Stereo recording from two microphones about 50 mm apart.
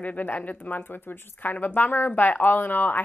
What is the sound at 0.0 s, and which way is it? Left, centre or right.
Speech, left.